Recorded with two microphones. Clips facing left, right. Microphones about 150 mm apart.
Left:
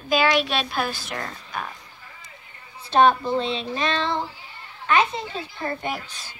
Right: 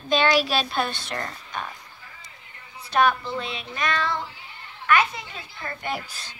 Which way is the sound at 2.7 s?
30° left (ahead or behind).